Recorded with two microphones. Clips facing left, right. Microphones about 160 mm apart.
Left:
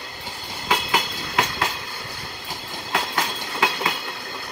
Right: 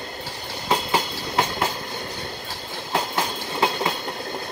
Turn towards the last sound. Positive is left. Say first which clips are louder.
# right 2 dB
turn(degrees=-25)  # may be behind; listen again after turning